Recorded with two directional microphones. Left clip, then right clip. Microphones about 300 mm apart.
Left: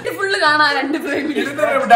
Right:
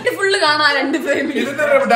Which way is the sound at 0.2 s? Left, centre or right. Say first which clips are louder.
Left 1 dB; centre.